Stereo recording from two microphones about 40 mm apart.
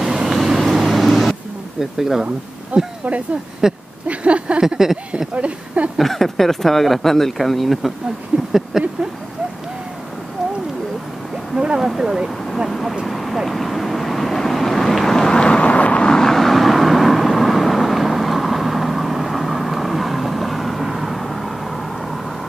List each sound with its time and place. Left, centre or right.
0.0 s vehicle: centre
1.8 s speech: centre
2.7 s speech: right
3.6 s speech: centre
4.1 s speech: right
4.6 s speech: centre
5.3 s speech: right
5.9 s speech: centre
8.5 s a sound: centre
11.5 s speech: centre
11.8 s speech: centre
13.0 s speech: centre
13.5 s vehicle: centre; by 16.1 s left
16.1 s vehicle: centre